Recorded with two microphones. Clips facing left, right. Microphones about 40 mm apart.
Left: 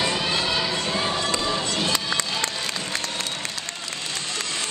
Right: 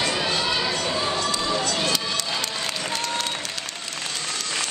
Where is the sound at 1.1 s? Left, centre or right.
Left.